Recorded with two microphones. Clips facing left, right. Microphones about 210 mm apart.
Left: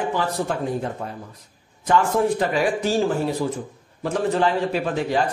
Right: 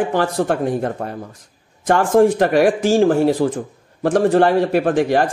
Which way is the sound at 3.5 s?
80° right.